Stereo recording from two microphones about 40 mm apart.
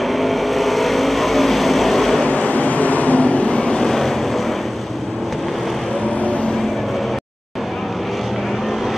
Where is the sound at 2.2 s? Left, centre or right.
Left.